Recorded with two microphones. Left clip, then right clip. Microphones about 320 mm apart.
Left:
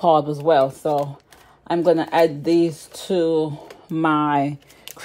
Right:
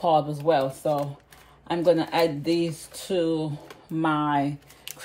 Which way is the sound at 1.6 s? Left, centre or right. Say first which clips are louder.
Left 4 dB; left.